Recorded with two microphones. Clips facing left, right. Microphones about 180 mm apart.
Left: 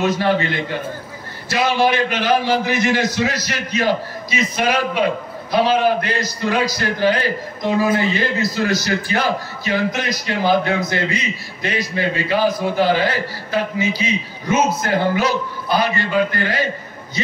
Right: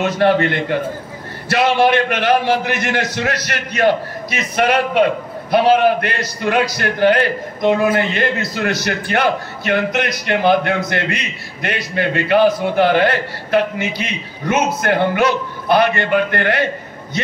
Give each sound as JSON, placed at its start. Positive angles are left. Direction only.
{"t": 0.0, "sound": "a man's voice", "side_deg": -65}